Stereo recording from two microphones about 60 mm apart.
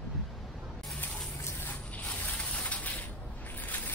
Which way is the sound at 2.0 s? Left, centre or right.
Left.